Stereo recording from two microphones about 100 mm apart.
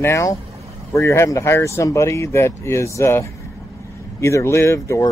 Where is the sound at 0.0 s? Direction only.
30° left (ahead or behind).